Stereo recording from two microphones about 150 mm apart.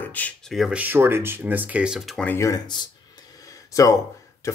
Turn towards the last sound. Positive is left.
turn(degrees=20)  # may be behind; listen again after turning